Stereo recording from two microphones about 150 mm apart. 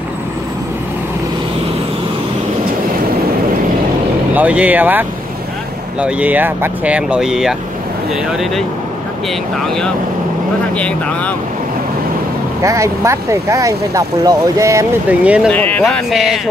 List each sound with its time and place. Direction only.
4.4 s speech: 10° right (ahead or behind)
10.8 s speech: 10° left (ahead or behind)
12.6 s speech: 20° right (ahead or behind)
15.0 s speech: 10° right (ahead or behind)
15.5 s speech: 10° left (ahead or behind)